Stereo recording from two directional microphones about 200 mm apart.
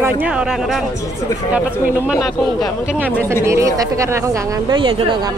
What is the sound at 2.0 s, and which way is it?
Speech, centre (ahead or behind).